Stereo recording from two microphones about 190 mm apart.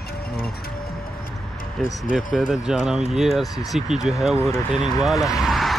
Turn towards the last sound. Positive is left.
turn(degrees=0)  # may be behind; listen again after turning